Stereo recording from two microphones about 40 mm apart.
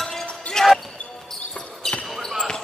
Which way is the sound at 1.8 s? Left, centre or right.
Centre.